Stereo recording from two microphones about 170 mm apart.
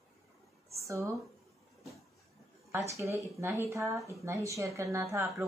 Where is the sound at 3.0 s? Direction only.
15° right (ahead or behind).